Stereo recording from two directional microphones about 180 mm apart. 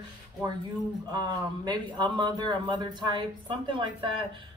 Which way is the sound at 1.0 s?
25° right (ahead or behind).